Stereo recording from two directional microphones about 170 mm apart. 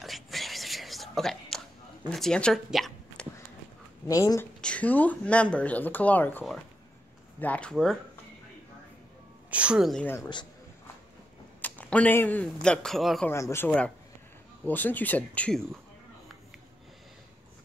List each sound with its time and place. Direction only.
0.0 s whispering: centre (ahead or behind)
2.0 s speech: 5° left (ahead or behind)
4.1 s speech: 20° left (ahead or behind)
4.6 s speech: 5° left (ahead or behind)
9.5 s speech: 5° right (ahead or behind)
10.0 s speech: 15° left (ahead or behind)
11.6 s a man's voice: 10° left (ahead or behind)
13.3 s speech: 15° left (ahead or behind)